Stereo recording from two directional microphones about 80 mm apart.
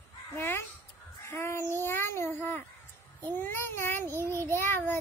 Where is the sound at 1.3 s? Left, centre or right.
Left.